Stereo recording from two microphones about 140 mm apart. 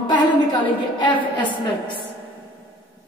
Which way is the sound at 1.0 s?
35° left (ahead or behind).